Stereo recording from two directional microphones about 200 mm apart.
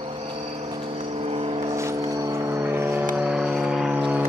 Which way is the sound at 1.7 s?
15° right (ahead or behind).